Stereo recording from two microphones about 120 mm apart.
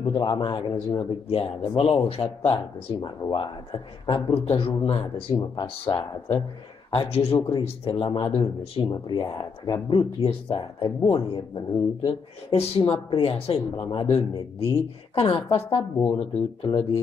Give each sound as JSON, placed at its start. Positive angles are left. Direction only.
{"t": 0.0, "sound": "speech", "side_deg": 40}
{"t": 5.4, "sound": "speech", "side_deg": 40}
{"t": 6.9, "sound": "speech", "side_deg": 55}
{"t": 8.9, "sound": "speech", "side_deg": 35}
{"t": 9.8, "sound": "speech", "side_deg": 45}
{"t": 13.7, "sound": "speech", "side_deg": 35}